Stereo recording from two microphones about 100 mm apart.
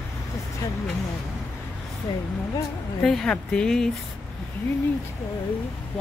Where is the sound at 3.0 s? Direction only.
5° left (ahead or behind).